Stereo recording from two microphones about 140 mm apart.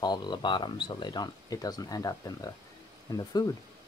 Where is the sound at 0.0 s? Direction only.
30° left (ahead or behind).